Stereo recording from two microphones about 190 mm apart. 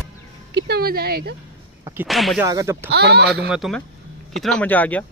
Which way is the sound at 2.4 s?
15° right (ahead or behind).